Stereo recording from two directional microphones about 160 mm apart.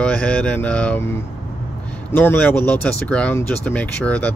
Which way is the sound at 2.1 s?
10° left (ahead or behind).